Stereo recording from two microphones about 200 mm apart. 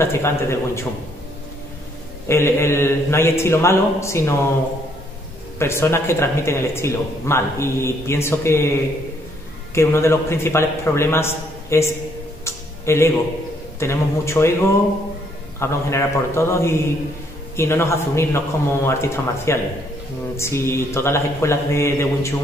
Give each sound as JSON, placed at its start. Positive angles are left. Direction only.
{"t": 0.0, "sound": "speech", "side_deg": 15}
{"t": 2.2, "sound": "speech", "side_deg": 15}
{"t": 5.6, "sound": "speech", "side_deg": 10}
{"t": 9.8, "sound": "speech", "side_deg": 15}
{"t": 12.4, "sound": "music", "side_deg": 15}
{"t": 13.7, "sound": "speech", "side_deg": 15}
{"t": 15.6, "sound": "speech", "side_deg": 15}